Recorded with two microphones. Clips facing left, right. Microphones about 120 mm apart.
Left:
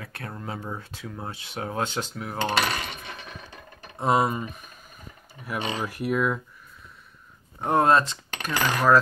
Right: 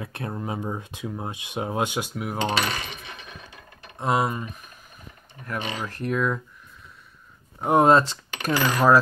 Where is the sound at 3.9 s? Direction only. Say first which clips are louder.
Left 1 dB; centre (ahead or behind).